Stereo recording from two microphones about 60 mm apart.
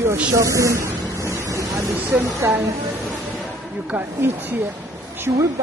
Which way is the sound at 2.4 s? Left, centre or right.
Right.